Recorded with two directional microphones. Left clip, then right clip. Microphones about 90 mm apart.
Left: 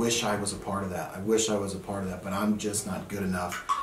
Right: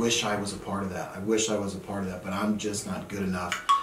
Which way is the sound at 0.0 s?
20° left (ahead or behind).